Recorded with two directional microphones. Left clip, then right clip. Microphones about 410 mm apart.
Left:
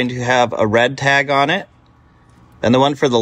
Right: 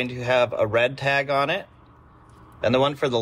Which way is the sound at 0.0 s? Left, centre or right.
Centre.